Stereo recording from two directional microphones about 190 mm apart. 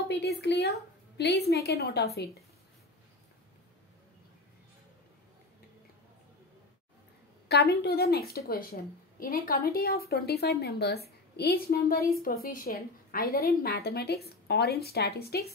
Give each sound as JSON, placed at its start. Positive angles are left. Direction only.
{"t": 0.1, "sound": "a woman's voice", "side_deg": 60}
{"t": 7.4, "sound": "a woman's voice", "side_deg": 60}